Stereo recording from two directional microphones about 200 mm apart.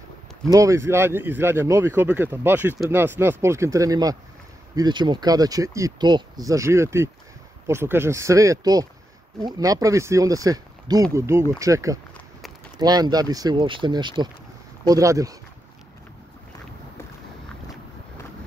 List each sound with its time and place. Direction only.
0.5 s speech: 15° right (ahead or behind)